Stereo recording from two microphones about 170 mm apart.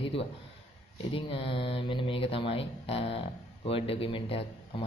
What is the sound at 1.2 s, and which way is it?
A man's voice, 35° left (ahead or behind).